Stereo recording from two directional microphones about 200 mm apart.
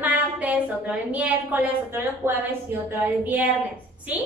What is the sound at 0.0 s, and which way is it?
A woman's voice, 10° right (ahead or behind).